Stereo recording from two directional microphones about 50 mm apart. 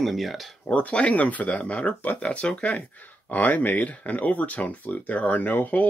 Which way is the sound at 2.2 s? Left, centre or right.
Left.